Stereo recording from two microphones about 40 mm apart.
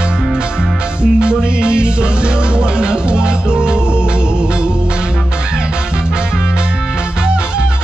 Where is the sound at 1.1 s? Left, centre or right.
Right.